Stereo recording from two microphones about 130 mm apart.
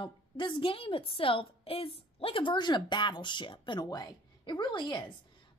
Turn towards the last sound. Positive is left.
turn(degrees=35)  # may be behind; listen again after turning